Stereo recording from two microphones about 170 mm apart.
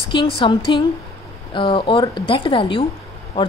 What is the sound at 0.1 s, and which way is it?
A woman's voice, 30° left (ahead or behind).